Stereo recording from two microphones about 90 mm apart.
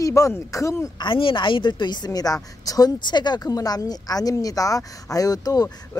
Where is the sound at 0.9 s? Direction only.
75° left (ahead or behind); by 2.0 s 55° left (ahead or behind).